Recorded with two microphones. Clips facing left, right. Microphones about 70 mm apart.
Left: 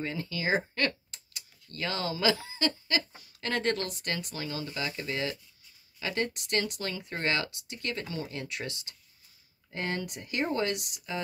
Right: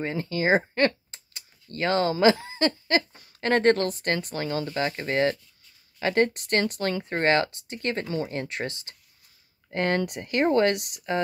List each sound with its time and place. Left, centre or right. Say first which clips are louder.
0.0 s speech: right 7 dB; right
9.7 s speech: right 9 dB; right